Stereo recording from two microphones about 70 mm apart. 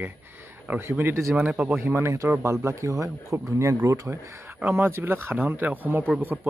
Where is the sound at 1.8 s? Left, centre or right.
Right.